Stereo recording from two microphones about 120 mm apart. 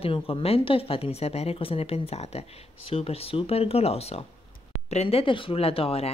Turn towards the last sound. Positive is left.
turn(degrees=55)  # may be behind; listen again after turning